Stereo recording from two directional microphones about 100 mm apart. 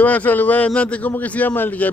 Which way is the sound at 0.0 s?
15° left (ahead or behind).